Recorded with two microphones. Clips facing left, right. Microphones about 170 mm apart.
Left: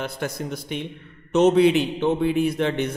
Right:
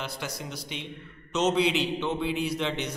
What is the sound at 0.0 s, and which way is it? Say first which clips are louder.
A man's voice: left 7 dB; 50° left (ahead or behind).